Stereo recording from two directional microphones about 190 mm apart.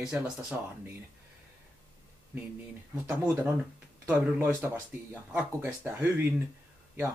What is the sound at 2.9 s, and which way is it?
Speech, 5° right (ahead or behind).